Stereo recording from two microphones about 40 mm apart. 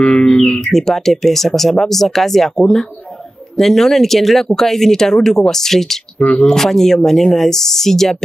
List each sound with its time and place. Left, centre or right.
0.0 s speech: left
0.7 s speech: centre
6.1 s speech: left
6.4 s speech: centre